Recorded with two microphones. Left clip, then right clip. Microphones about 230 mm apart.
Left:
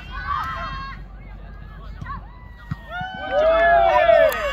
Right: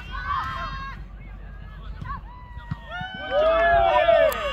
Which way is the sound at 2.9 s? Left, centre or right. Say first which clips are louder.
Left 3 dB; centre.